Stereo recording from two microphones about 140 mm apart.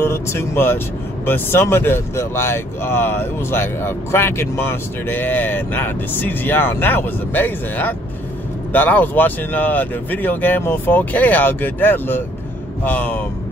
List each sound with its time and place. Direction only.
0.0 s speech: 20° left (ahead or behind)